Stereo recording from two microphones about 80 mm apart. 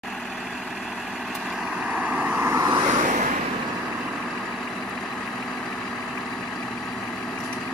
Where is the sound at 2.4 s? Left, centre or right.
Right.